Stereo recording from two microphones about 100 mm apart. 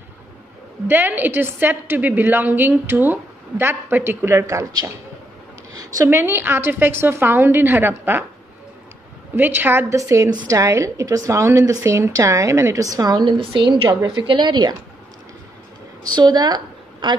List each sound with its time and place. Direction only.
0.8 s a woman's voice: 20° right (ahead or behind)
6.0 s a woman's voice: 20° right (ahead or behind)
9.3 s a woman's voice: 20° right (ahead or behind); by 13.2 s 40° right (ahead or behind)
13.2 s a woman's voice: 55° right (ahead or behind)
16.2 s speech: 45° right (ahead or behind)